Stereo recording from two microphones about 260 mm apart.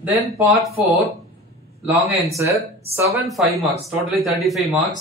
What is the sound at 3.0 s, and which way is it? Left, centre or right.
Speech, centre.